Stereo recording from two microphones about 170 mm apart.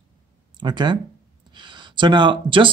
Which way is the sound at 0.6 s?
25° right (ahead or behind).